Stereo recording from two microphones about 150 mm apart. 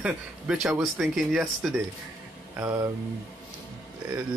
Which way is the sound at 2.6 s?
15° right (ahead or behind).